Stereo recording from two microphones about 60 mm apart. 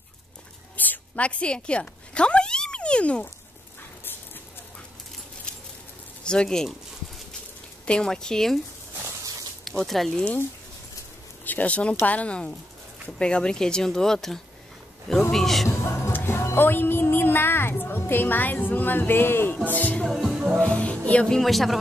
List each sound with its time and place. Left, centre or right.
0.7 s cat: left
6.2 s speech: centre
7.8 s speech: centre
9.7 s speech: centre
11.4 s speech: left; by 15.7 s centre
15.8 s music: left
16.1 s music: left
20.1 s music: centre
20.5 s music: left
21.1 s speech: centre
21.4 s speech: centre